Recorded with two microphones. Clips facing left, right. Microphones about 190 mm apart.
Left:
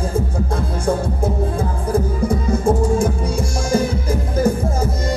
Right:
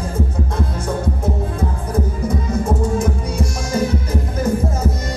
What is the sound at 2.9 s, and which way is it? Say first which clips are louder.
Music: left 1 dB; 30° left (ahead or behind).